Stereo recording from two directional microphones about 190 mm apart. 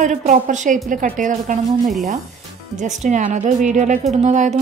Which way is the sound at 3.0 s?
40° right (ahead or behind).